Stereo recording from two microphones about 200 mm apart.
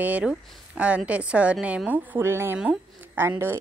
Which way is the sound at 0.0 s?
5° right (ahead or behind).